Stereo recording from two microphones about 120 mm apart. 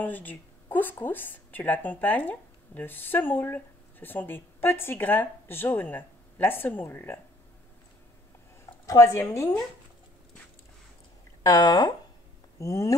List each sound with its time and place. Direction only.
0.0 s speech: 15° left (ahead or behind)
8.8 s a woman's voice: 30° left (ahead or behind)
11.4 s speech: 35° left (ahead or behind)